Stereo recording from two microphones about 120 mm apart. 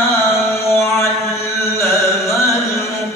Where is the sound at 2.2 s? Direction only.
25° left (ahead or behind).